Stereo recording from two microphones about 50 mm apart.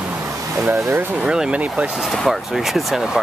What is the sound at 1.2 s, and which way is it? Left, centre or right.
Speech, centre.